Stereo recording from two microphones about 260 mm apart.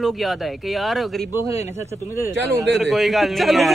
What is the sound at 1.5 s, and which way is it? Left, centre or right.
Speech, left.